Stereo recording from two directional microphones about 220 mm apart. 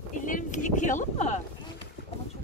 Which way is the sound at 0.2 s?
35° left (ahead or behind).